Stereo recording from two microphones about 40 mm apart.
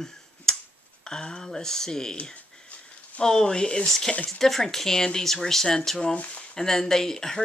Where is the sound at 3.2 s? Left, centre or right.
Centre.